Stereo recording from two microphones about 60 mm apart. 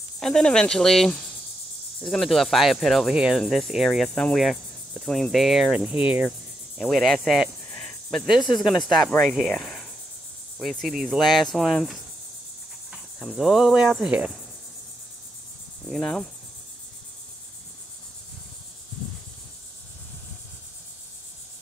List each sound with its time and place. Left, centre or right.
0.2 s speech: centre
4.1 s speech: centre
4.4 s cricket: centre
5.9 s cricket: right
6.8 s speech: centre
7.7 s cricket: centre
8.3 s speech: centre
9.2 s cricket: centre
9.5 s cricket: centre
10.6 s speech: centre
13.3 s speech: centre
13.9 s cricket: centre
15.8 s speech: centre